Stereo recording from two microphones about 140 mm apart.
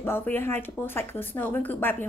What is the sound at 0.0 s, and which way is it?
A woman's voice, 15° left (ahead or behind).